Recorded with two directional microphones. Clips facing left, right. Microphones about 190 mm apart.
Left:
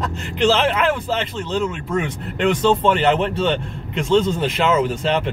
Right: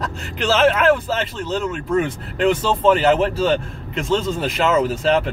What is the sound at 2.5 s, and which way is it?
Speech, centre (ahead or behind).